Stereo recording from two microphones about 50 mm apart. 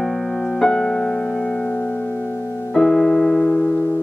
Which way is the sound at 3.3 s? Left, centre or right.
Left.